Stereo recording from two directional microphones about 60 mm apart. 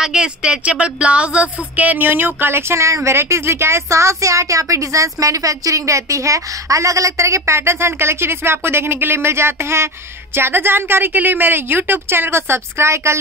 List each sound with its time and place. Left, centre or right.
0.0 s a woman's voice: centre; by 13.2 s right